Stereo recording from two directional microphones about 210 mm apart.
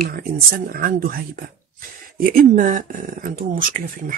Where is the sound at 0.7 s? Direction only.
45° right (ahead or behind).